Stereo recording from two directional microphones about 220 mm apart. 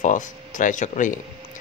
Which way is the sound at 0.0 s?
35° left (ahead or behind).